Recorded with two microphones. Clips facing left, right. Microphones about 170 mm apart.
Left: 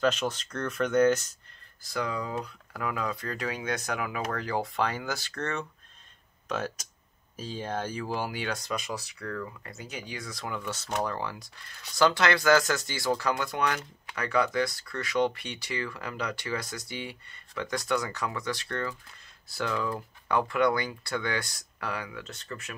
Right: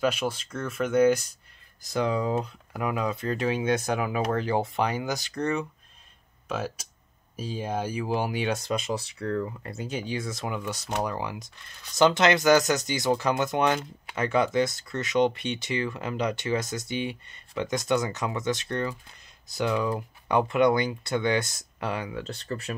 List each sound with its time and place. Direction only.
0.0 s speech: 10° right (ahead or behind)
1.8 s speech: 20° right (ahead or behind)
6.5 s speech: 5° right (ahead or behind); by 22.8 s 35° right (ahead or behind)